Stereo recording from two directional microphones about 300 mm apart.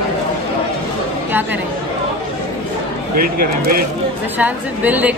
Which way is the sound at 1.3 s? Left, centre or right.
Centre.